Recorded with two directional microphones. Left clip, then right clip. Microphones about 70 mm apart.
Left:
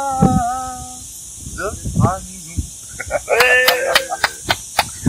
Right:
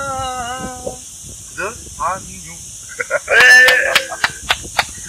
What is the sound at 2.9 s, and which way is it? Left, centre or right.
Sheep, right.